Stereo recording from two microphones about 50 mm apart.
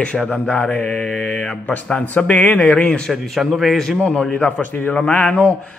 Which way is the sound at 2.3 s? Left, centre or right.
Left.